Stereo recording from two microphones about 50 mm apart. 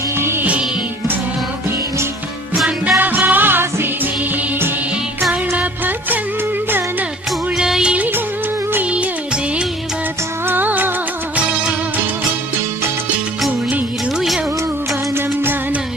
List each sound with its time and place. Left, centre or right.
2.5 s music: centre
3.0 s music: right
5.3 s music: right
7.5 s music: centre
10.5 s music of bollywood: right